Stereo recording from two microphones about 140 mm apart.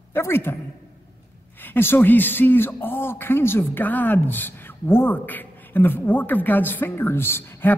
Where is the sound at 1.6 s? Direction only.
15° left (ahead or behind).